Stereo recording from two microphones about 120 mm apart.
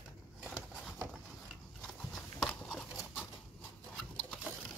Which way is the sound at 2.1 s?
5° left (ahead or behind).